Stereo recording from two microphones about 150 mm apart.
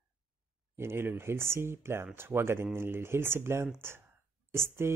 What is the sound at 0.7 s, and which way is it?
Speech, 15° right (ahead or behind).